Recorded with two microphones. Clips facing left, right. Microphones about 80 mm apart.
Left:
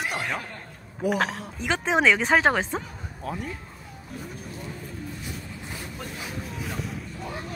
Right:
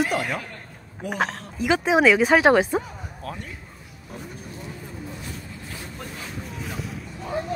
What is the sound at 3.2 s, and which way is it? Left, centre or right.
Speech, centre.